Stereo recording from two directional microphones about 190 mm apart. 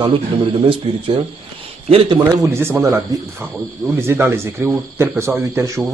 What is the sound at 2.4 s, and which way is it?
A man's voice, 15° right (ahead or behind).